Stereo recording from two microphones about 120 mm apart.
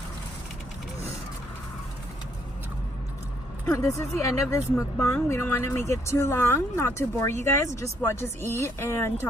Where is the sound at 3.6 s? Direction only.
25° left (ahead or behind).